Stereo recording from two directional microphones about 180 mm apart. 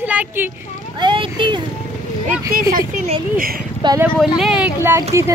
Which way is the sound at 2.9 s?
50° right (ahead or behind).